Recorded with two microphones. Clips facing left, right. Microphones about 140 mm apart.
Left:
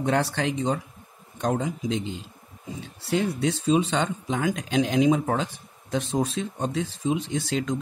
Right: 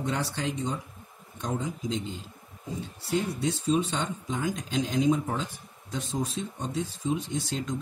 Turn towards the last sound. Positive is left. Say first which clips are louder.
# left 5 dB
turn(degrees=85)